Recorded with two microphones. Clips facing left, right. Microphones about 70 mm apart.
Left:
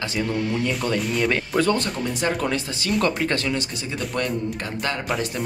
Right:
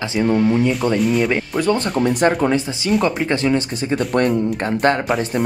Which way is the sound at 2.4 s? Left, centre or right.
Right.